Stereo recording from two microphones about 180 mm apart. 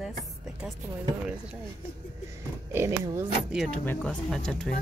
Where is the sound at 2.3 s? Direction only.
15° right (ahead or behind).